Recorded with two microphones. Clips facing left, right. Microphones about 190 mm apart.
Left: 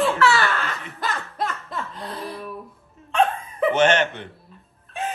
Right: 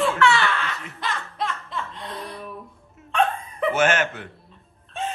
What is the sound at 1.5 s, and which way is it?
Laughter, 45° left (ahead or behind).